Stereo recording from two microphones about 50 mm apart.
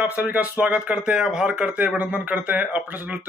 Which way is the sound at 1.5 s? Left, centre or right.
Right.